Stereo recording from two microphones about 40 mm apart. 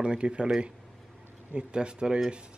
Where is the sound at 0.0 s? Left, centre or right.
Right.